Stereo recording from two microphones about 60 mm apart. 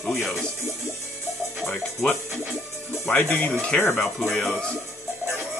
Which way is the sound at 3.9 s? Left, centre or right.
Centre.